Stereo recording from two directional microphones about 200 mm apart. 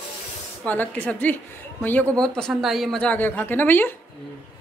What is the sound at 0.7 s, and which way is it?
A man's voice, 10° left (ahead or behind).